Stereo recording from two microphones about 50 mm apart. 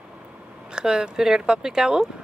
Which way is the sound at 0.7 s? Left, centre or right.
Centre.